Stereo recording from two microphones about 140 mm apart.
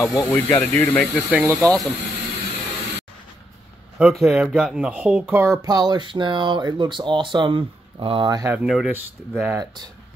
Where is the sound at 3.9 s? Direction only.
5° right (ahead or behind); by 8.4 s 35° right (ahead or behind).